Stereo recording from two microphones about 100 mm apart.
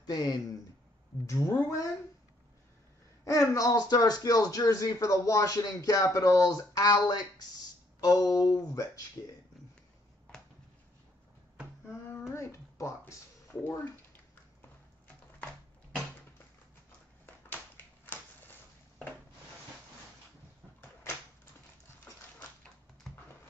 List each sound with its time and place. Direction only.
0.0 s speech: 40° left (ahead or behind)
1.2 s speech: 30° left (ahead or behind)
3.3 s speech: 35° left (ahead or behind)
11.9 s a sound: 25° left (ahead or behind)
17.5 s typewriter: 20° left (ahead or behind)